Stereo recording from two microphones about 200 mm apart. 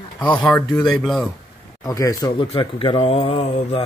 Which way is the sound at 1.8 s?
15° left (ahead or behind).